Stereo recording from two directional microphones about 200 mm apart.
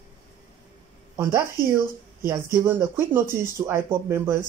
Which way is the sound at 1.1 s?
15° right (ahead or behind).